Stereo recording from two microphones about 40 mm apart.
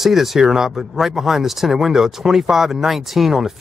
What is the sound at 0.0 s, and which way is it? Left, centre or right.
Speech, centre.